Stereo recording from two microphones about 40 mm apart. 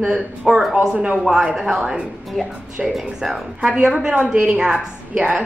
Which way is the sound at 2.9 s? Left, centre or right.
Centre.